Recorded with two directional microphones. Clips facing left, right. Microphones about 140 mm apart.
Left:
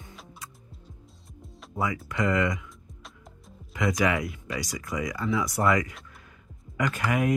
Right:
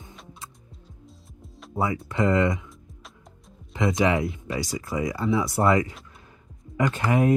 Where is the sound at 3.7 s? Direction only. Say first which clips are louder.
Right 3 dB; 25° right (ahead or behind).